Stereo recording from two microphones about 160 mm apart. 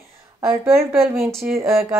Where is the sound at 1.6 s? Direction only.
15° right (ahead or behind).